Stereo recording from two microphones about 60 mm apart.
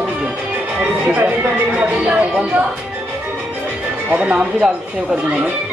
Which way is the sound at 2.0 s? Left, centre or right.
Right.